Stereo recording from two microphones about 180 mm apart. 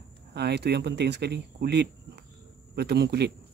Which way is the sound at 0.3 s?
65° right (ahead or behind).